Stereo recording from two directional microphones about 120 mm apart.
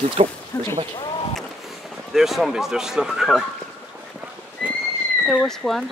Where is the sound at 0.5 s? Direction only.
30° left (ahead or behind).